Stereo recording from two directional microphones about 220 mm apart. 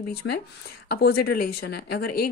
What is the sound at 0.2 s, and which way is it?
Speech, 60° left (ahead or behind).